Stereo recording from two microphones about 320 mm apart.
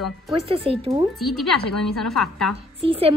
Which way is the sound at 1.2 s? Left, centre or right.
Centre.